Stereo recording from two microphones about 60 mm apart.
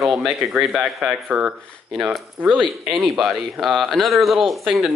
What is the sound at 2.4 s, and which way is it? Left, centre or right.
Speech, centre.